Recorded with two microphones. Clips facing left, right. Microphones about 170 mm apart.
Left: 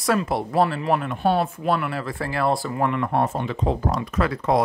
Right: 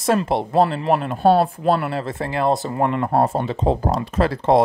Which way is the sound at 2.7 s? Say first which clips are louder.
Right 3 dB; 30° right (ahead or behind).